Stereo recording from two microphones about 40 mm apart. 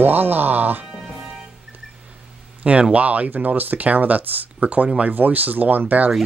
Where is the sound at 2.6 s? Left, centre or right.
Right.